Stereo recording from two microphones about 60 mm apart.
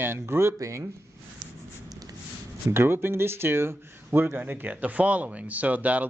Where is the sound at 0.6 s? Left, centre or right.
Right.